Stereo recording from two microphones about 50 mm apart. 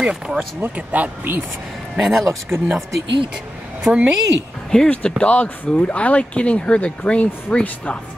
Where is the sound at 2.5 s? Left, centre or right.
Right.